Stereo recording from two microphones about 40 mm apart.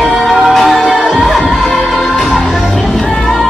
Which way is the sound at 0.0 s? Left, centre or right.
Centre.